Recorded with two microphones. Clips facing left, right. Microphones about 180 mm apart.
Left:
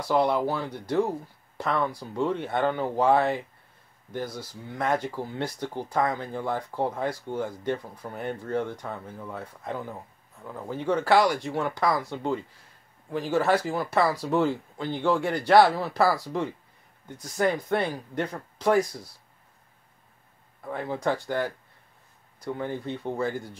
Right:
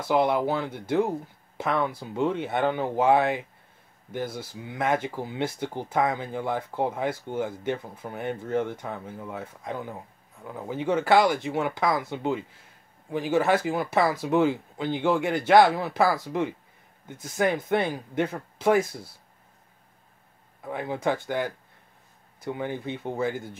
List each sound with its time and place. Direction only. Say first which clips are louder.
0.1 s speech: right 1 dB; centre (ahead or behind)
4.3 s speech: right 2 dB; 25° right (ahead or behind)
4.6 s speech: right 1 dB; 5° right (ahead or behind)
20.6 s speech: right 1 dB; 5° right (ahead or behind)